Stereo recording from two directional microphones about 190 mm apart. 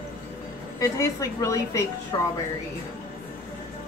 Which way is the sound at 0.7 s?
15° left (ahead or behind).